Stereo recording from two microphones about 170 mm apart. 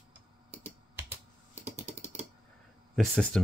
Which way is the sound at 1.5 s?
40° right (ahead or behind).